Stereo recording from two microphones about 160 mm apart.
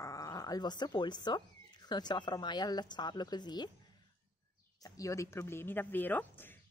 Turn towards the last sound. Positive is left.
turn(degrees=10)  # may be behind; listen again after turning